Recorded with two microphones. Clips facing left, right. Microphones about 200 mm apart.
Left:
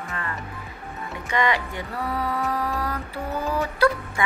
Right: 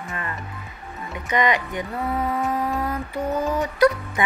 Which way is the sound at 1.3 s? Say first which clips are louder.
Right 2 dB; 20° right (ahead or behind).